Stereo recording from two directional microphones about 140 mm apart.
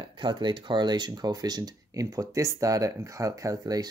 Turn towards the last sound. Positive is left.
turn(degrees=-25)  # may be behind; listen again after turning